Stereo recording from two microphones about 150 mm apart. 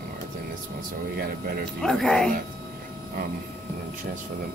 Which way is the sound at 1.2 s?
90° right.